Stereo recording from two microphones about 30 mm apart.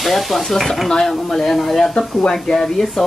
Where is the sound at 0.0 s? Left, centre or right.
Centre.